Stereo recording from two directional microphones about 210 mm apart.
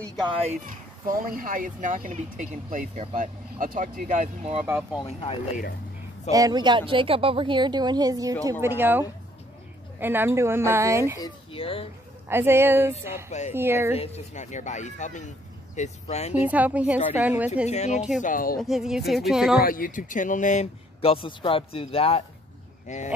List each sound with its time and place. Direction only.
0.5 s speech: 40° right (ahead or behind)
4.9 s speech: 25° left (ahead or behind)
6.3 s a woman's voice: 20° right (ahead or behind)
11.1 s speech: 20° left (ahead or behind)
12.3 s a woman's voice: 10° right (ahead or behind)
13.9 s speech: 30° left (ahead or behind)
16.3 s a woman's voice: 5° right (ahead or behind)
17.6 s speech: 35° left (ahead or behind)
18.6 s speech: centre (ahead or behind)
19.6 s speech: 40° left (ahead or behind)